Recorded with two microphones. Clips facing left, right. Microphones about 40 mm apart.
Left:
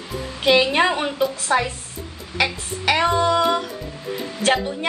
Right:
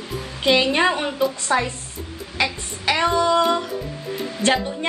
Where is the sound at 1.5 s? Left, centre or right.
Centre.